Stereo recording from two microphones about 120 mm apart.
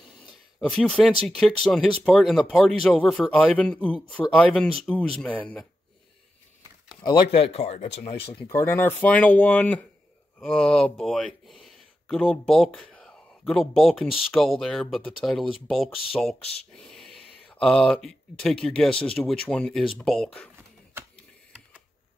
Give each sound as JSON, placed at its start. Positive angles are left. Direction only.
{"t": 0.6, "sound": "speech", "side_deg": 5}
{"t": 7.2, "sound": "speech", "side_deg": 55}
{"t": 8.5, "sound": "speech", "side_deg": 20}